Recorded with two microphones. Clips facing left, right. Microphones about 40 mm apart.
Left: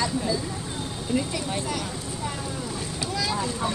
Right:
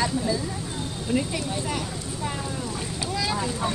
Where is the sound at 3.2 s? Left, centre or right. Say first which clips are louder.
Even; centre.